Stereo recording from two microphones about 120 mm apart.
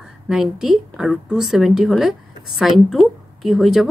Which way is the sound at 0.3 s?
5° right (ahead or behind).